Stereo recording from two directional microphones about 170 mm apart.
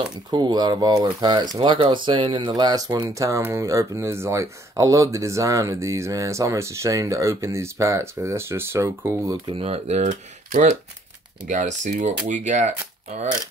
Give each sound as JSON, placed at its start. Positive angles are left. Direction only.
{"t": 0.3, "sound": "speech", "side_deg": -25}
{"t": 9.6, "sound": "speech", "side_deg": -40}